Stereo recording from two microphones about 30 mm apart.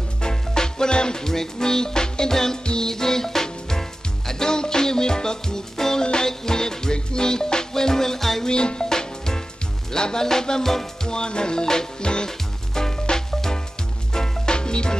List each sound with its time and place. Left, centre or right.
0.2 s music: left
2.6 s music: left
2.9 s music: centre
8.5 s music: left
12.0 s music: left
14.1 s music: centre
14.5 s music: left